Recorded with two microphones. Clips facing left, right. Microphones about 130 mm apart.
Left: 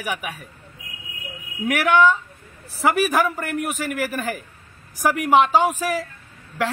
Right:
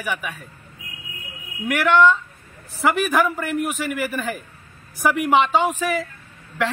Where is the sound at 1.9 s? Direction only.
10° left (ahead or behind).